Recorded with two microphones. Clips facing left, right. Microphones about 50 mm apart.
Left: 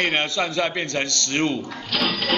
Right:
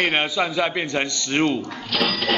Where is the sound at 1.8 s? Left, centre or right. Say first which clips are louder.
Right 1 dB; centre.